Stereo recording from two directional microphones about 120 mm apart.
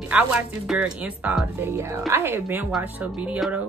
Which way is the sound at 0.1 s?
10° right (ahead or behind).